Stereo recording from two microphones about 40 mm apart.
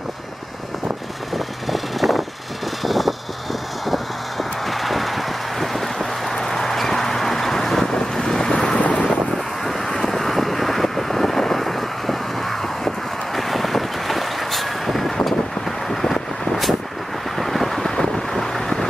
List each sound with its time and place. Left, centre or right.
1.3 s vehicle: centre
8.5 s wind noise: left
9.8 s vehicle: centre
17.4 s vehicle: centre